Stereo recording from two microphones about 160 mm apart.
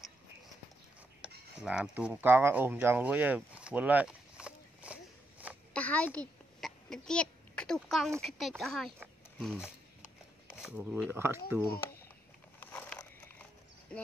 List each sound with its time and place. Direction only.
1.2 s speech: 5° right (ahead or behind)
5.7 s a sound: 10° left (ahead or behind)
8.2 s speech: centre (ahead or behind)
10.6 s speech: centre (ahead or behind)
11.1 s speech: 15° right (ahead or behind)
12.5 s a sound: 10° left (ahead or behind)
13.9 s speech: 10° left (ahead or behind)